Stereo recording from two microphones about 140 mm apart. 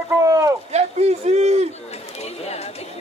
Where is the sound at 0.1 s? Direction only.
25° right (ahead or behind).